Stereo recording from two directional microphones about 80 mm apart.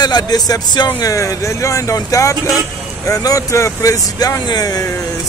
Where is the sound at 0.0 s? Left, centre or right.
Left.